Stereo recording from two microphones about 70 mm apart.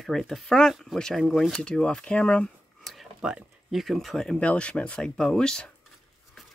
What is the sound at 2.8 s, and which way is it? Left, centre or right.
Speech, centre.